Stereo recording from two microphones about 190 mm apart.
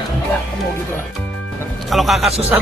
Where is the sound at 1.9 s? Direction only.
Centre (ahead or behind).